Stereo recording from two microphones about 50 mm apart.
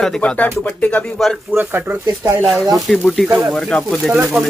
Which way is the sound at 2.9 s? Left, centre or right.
Centre.